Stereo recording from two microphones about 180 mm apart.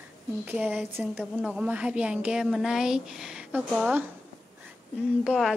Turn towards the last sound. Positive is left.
turn(degrees=-5)  # may be behind; listen again after turning